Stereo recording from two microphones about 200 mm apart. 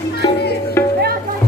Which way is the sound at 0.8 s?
15° left (ahead or behind).